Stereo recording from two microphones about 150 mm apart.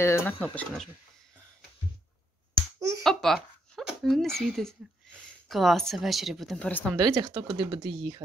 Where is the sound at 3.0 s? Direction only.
Centre (ahead or behind).